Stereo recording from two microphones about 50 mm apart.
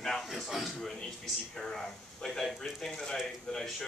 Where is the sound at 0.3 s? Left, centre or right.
Centre.